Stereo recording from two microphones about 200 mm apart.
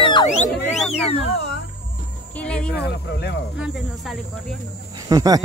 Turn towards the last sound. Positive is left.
turn(degrees=-20)  # may be behind; listen again after turning